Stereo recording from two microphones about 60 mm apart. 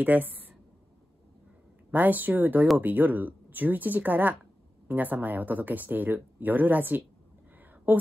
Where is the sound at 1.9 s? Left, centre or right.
Right.